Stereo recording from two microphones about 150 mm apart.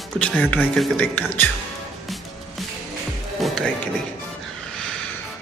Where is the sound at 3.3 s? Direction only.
Centre (ahead or behind).